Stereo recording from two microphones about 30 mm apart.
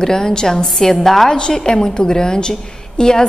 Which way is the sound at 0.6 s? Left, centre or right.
Centre.